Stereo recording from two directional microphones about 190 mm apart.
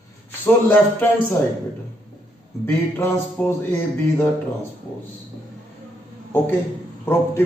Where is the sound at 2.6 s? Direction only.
10° left (ahead or behind).